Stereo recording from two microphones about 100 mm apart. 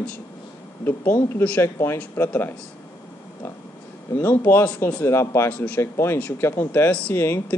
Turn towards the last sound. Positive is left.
turn(degrees=25)  # may be behind; listen again after turning